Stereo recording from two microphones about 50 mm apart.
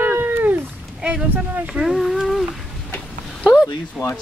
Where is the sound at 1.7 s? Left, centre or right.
Centre.